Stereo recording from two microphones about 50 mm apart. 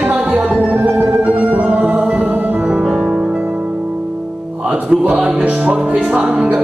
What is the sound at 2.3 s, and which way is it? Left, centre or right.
Music, right.